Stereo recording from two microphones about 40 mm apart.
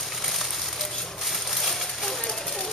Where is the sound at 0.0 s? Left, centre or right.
Centre.